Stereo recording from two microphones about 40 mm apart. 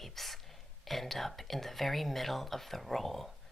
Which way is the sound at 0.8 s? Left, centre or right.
Centre.